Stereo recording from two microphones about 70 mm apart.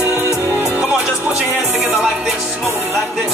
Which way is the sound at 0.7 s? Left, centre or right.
Centre.